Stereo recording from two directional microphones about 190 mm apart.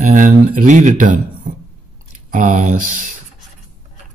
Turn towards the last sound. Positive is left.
turn(degrees=-45)  # may be behind; listen again after turning